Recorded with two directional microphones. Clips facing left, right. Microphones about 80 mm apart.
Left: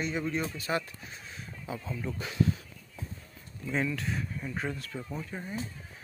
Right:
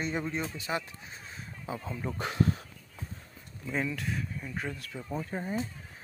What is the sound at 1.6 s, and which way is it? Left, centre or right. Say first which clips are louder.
Speech: even; right.